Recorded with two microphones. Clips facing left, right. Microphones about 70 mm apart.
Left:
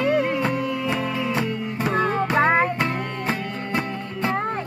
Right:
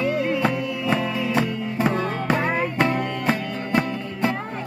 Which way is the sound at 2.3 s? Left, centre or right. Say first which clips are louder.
Left 7 dB; left.